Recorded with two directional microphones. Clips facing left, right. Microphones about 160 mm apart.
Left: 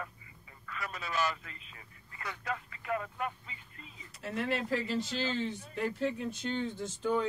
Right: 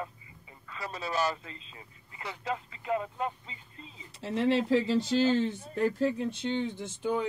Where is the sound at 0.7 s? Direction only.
30° right (ahead or behind).